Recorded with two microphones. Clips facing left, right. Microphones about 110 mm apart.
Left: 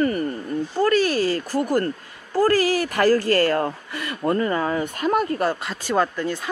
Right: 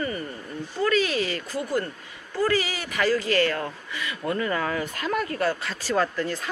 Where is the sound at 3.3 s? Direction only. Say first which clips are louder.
Left 5 dB; 40° left (ahead or behind).